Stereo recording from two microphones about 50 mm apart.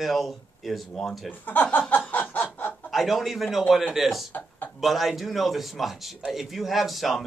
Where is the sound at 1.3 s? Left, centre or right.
Left.